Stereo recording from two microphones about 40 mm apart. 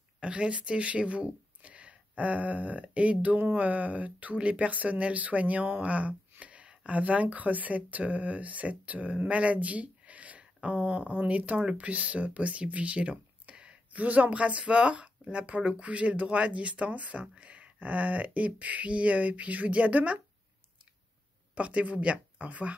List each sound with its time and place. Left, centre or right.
0.2 s speech: right
6.4 s a sound: right
6.9 s speech: right
13.9 s speech: right
21.5 s speech: right